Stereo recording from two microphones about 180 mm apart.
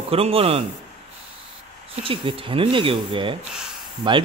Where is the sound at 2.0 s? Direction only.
30° right (ahead or behind).